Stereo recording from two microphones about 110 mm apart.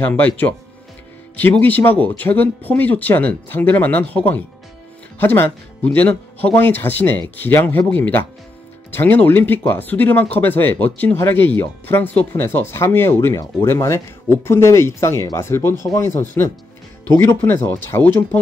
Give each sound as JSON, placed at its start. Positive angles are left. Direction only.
{"t": 0.0, "sound": "speech", "side_deg": 15}